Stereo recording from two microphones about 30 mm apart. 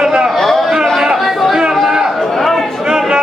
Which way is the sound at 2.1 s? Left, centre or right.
Centre.